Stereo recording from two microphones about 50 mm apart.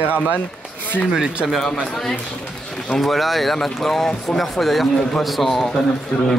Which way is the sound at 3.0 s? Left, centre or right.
Centre.